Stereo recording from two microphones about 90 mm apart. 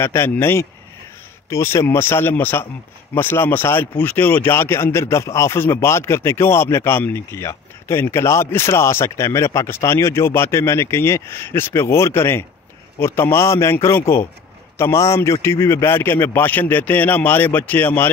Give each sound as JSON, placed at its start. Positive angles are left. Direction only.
{"t": 0.0, "sound": "speech", "side_deg": 25}